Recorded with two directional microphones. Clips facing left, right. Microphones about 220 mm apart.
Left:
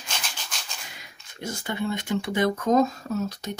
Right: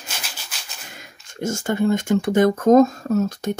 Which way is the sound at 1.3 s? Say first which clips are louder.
Right 8 dB; 45° right (ahead or behind).